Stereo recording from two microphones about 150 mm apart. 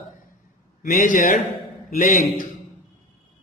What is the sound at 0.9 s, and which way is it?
Speech, 65° left (ahead or behind).